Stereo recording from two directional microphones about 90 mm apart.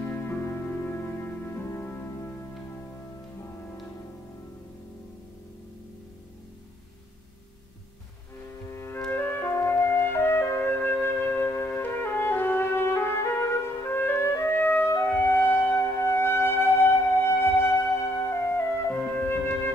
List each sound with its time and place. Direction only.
0.1 s music: 25° left (ahead or behind)
8.6 s music: 30° left (ahead or behind)